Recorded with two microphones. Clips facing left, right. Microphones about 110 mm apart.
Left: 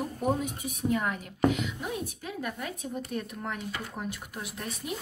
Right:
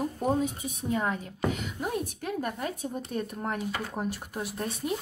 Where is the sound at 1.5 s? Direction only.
45° right (ahead or behind).